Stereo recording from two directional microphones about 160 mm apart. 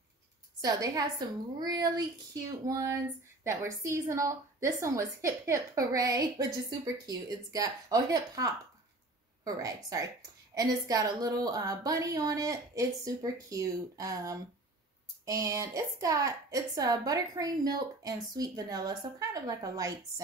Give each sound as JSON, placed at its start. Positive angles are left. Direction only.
{"t": 0.6, "sound": "a woman's voice", "side_deg": -20}